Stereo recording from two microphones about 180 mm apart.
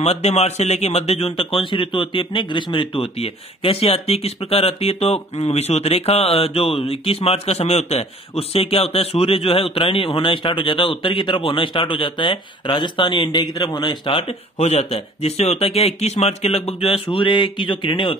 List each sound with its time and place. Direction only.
0.0 s a man's voice: 35° left (ahead or behind)